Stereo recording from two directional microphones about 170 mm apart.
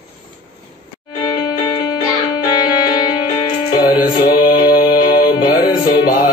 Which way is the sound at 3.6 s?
25° left (ahead or behind).